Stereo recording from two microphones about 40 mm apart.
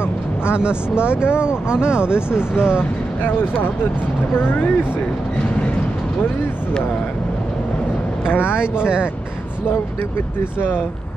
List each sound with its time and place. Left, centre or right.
0.5 s speech: right
2.1 s speech: left
3.2 s speech: left
8.4 s speech: right